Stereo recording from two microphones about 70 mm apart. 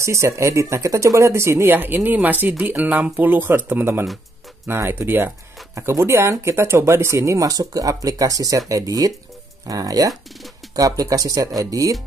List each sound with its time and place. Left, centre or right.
0.0 s speech: right